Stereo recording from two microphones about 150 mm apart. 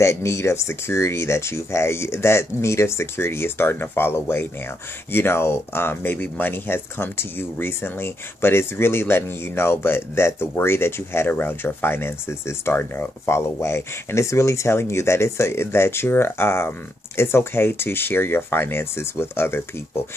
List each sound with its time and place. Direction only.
0.0 s speech: 20° left (ahead or behind)